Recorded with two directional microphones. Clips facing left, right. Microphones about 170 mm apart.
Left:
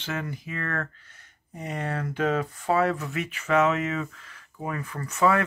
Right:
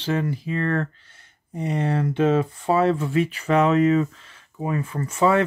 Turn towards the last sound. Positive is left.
turn(degrees=-25)  # may be behind; listen again after turning